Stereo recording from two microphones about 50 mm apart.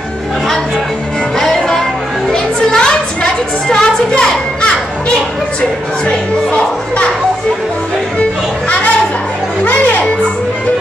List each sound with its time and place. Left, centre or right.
1.4 s music: centre
2.2 s a sound: centre
6.0 s speech: left
8.2 s children playing: left